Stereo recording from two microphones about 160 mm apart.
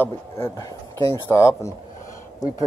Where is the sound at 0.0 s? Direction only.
15° left (ahead or behind).